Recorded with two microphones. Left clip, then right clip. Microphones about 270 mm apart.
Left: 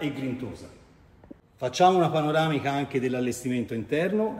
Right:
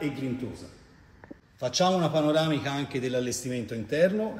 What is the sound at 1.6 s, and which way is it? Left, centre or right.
A man's voice, left.